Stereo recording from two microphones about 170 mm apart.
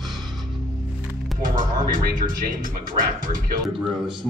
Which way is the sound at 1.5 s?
50° right (ahead or behind).